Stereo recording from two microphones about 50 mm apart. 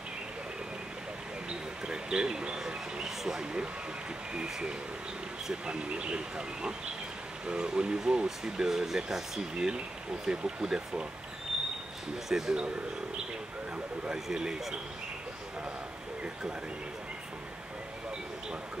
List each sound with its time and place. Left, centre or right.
1.5 s a sound: centre
4.3 s speech: centre
12.3 s speech: centre
14.1 s speech: centre